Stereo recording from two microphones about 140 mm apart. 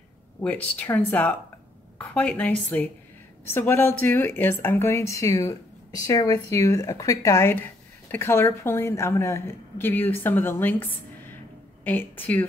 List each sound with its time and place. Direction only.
0.4 s speech: 10° left (ahead or behind)